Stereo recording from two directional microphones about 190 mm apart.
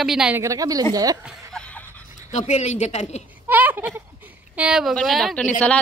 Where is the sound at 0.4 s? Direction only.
20° right (ahead or behind).